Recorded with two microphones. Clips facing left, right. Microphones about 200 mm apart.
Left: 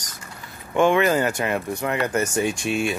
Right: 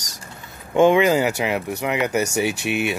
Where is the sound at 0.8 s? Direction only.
15° right (ahead or behind).